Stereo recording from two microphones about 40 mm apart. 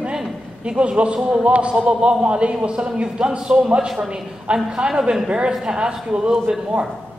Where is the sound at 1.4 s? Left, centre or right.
Right.